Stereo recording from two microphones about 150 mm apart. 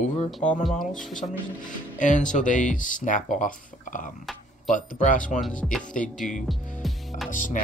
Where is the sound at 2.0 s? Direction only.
55° left (ahead or behind).